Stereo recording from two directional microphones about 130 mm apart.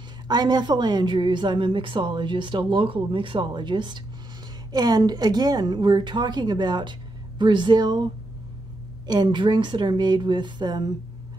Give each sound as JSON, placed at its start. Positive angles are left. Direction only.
{"t": 0.3, "sound": "a woman's voice", "side_deg": -35}